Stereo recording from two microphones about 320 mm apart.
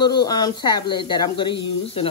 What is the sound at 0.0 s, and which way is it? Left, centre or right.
Speech, centre.